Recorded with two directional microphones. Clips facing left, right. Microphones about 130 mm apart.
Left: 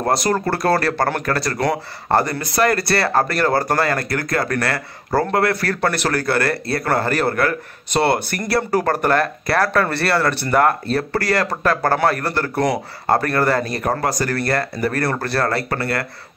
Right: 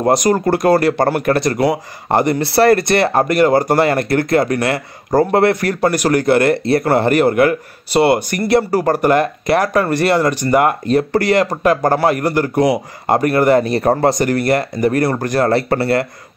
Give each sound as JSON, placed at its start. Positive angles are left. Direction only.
{"t": 0.0, "sound": "speech", "side_deg": -15}
{"t": 2.4, "sound": "speech", "side_deg": -30}